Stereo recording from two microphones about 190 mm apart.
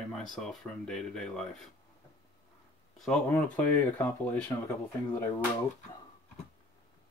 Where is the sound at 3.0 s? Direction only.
5° left (ahead or behind).